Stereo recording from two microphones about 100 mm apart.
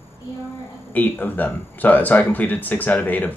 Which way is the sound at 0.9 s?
15° left (ahead or behind).